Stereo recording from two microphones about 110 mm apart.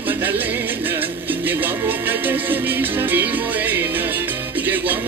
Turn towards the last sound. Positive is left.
turn(degrees=-15)  # may be behind; listen again after turning